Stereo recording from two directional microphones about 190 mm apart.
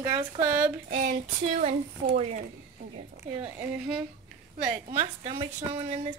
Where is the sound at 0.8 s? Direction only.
40° right (ahead or behind).